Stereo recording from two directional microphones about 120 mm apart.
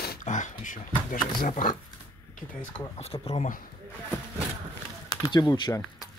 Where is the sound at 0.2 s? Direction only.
90° left.